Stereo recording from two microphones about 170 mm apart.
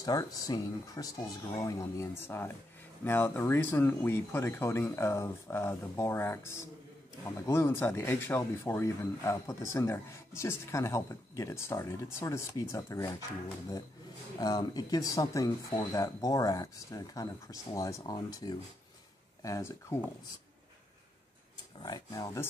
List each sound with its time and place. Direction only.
0.0 s speech: 20° left (ahead or behind)
14.4 s speech: 25° left (ahead or behind)
21.7 s speech: 25° left (ahead or behind)